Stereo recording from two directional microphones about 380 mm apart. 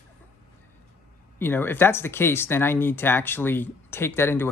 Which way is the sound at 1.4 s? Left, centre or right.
Centre.